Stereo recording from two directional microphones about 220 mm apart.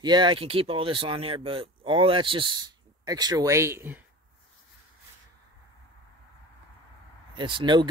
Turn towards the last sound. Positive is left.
turn(degrees=-20)  # may be behind; listen again after turning